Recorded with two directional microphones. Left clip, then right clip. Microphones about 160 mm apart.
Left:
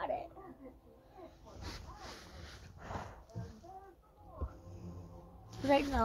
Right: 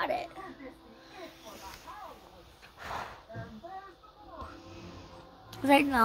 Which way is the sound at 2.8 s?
Centre (ahead or behind).